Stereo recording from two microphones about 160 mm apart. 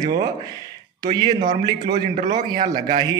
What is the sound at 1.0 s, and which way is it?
Speech, 25° right (ahead or behind).